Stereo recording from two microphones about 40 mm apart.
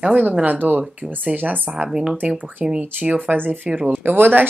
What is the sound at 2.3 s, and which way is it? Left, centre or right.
Speech, right.